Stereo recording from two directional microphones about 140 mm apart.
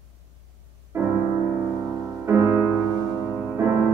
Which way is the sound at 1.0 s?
20° right (ahead or behind).